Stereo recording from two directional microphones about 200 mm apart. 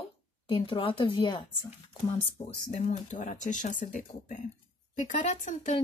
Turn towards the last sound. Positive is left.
turn(degrees=35)  # may be behind; listen again after turning